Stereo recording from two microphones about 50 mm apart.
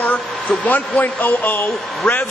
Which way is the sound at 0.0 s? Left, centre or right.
Left.